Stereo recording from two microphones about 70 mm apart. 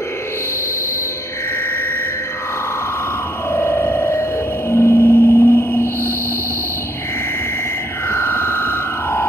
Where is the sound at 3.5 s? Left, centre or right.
Left.